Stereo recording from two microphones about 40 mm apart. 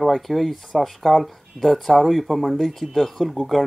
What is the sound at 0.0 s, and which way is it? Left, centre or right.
Speech, centre.